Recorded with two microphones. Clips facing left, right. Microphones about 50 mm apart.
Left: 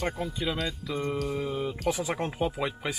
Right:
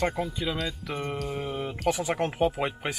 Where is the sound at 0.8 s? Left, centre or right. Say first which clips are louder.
Left 1 dB; right.